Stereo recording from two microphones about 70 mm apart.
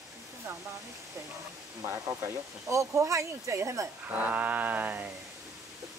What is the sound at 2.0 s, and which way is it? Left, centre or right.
Speech, right.